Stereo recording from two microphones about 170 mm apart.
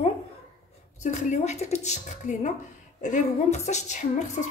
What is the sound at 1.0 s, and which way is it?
A woman's voice, 45° left (ahead or behind).